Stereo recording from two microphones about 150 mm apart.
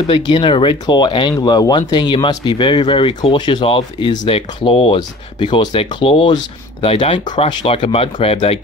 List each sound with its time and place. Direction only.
0.1 s speech: 35° left (ahead or behind)